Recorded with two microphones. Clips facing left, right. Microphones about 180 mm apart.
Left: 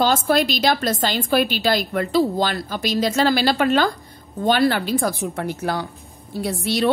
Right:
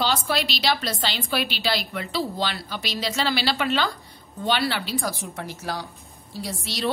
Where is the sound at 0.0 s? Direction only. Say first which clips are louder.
Left 7 dB; 50° left (ahead or behind).